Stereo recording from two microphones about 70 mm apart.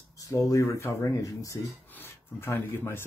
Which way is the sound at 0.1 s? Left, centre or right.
Left.